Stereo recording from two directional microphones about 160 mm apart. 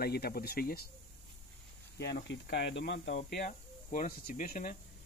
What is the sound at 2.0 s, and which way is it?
Speech, 90° left.